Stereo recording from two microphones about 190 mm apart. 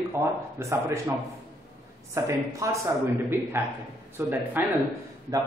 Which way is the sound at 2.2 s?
15° right (ahead or behind).